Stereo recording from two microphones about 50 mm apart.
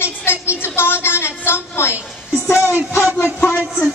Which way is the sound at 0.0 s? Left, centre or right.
Left.